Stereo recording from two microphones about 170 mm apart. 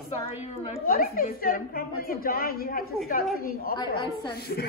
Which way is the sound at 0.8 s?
60° left (ahead or behind).